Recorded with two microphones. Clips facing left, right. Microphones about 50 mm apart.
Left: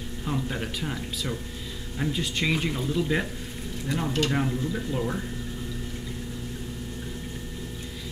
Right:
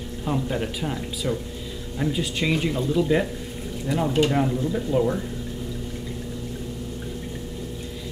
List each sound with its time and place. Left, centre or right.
0.2 s speech: centre